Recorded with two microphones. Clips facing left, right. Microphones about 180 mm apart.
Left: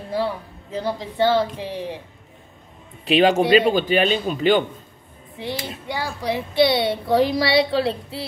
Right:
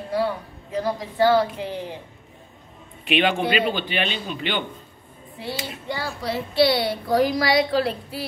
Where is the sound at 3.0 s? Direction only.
35° left (ahead or behind).